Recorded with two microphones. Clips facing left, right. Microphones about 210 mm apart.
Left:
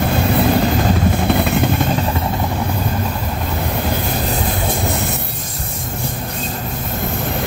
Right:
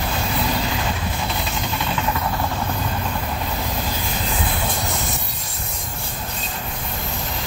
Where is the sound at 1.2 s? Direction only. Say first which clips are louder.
Left 11 dB; 60° left (ahead or behind).